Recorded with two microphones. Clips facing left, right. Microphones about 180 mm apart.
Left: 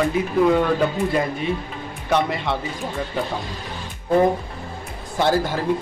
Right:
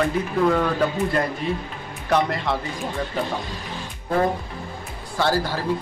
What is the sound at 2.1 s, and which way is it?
Speech, centre (ahead or behind).